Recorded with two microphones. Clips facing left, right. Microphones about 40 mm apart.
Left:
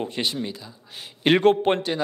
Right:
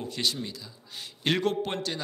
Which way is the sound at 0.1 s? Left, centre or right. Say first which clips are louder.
Left 4 dB; left.